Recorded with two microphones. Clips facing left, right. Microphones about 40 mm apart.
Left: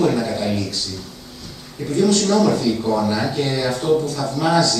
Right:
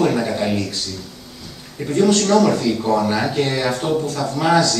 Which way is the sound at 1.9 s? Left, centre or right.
Right.